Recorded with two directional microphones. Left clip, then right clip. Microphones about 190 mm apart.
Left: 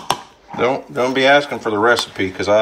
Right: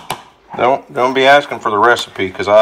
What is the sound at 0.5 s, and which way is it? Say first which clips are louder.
Speech: right 4 dB; 5° left (ahead or behind).